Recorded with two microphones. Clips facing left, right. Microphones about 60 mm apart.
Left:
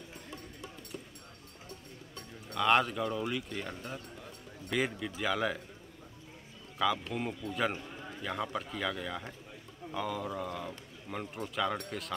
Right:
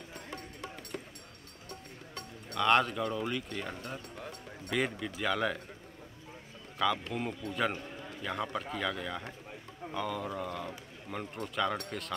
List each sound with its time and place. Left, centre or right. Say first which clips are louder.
0.1 s music: right 3 dB; right
2.5 s a man's voice: even; centre
4.6 s a man's voice: even; centre
6.8 s a man's voice: even; centre